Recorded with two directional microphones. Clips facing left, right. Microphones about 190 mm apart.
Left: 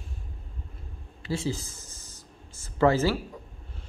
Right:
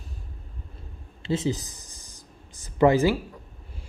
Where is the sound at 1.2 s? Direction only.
20° right (ahead or behind).